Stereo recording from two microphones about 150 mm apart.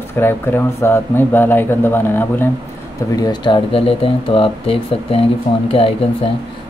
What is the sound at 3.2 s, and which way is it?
Speech, 30° left (ahead or behind).